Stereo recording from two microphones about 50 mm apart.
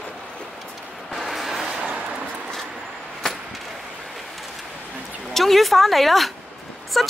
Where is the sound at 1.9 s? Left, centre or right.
Right.